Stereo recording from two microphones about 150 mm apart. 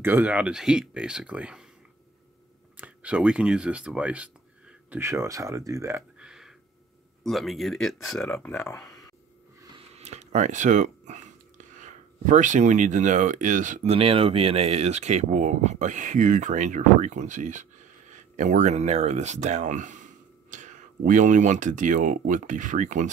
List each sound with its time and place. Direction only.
0.0 s speech: 10° right (ahead or behind)
2.8 s speech: 10° right (ahead or behind)
4.9 s speech: 20° right (ahead or behind)
6.1 s a sound: 5° right (ahead or behind)
7.2 s speech: centre (ahead or behind)
8.4 s speech: 15° left (ahead or behind)
9.9 s speech: 50° right (ahead or behind)
13.9 s speech: 40° right (ahead or behind); by 23.1 s 55° right (ahead or behind)